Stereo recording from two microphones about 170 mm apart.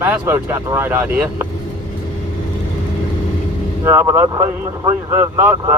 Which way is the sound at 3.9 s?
15° right (ahead or behind).